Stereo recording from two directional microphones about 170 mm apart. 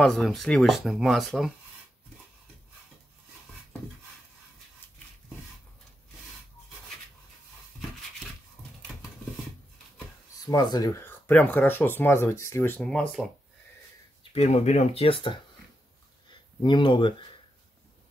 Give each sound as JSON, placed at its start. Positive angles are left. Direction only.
{"t": 0.0, "sound": "speech", "side_deg": 0}
{"t": 10.4, "sound": "speech", "side_deg": 25}
{"t": 14.3, "sound": "speech", "side_deg": 40}
{"t": 16.6, "sound": "speech", "side_deg": 30}